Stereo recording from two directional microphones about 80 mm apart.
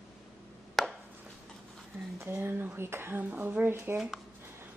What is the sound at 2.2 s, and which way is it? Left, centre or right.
A woman's voice, right.